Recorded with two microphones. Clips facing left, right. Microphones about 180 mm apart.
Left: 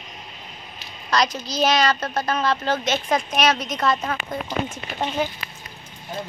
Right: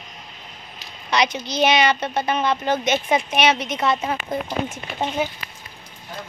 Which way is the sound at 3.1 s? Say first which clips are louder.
Right 1 dB; 5° right (ahead or behind).